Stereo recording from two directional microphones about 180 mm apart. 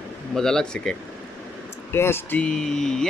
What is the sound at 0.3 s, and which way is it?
Speech, 5° left (ahead or behind).